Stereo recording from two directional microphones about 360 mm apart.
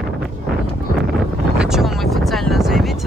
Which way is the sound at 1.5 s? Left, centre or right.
Centre.